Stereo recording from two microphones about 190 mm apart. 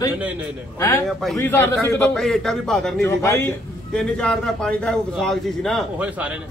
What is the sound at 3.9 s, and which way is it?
A man's voice, 5° left (ahead or behind).